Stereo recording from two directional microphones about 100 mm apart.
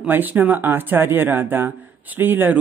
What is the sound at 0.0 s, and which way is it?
A man's voice, 15° right (ahead or behind).